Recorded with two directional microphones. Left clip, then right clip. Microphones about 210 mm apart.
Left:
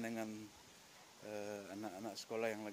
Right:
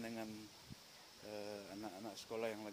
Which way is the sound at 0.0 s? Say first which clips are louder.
Left 3 dB; 30° left (ahead or behind).